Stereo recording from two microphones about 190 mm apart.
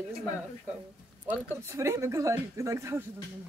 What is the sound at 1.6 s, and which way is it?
Speech, 15° right (ahead or behind).